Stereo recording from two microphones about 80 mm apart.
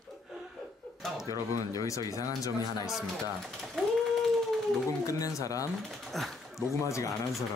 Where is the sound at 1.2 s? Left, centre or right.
Left.